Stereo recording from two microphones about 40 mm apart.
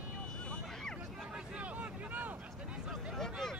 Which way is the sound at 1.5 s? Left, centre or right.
Right.